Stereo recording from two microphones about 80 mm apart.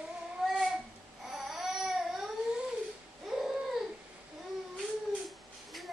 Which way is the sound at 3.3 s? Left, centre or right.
Centre.